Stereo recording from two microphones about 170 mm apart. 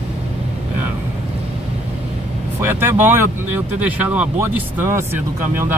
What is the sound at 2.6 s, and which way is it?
Speech, 10° right (ahead or behind).